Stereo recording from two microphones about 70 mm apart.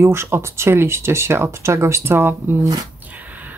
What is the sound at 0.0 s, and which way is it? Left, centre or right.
Speech, right.